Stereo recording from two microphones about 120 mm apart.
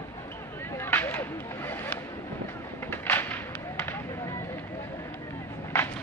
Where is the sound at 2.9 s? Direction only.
15° left (ahead or behind).